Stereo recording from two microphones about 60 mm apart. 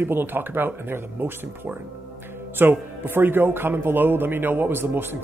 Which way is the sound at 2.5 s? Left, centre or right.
Right.